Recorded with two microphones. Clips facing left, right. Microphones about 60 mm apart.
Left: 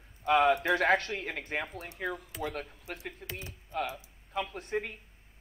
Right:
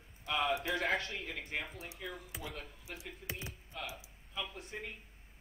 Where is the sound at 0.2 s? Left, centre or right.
Left.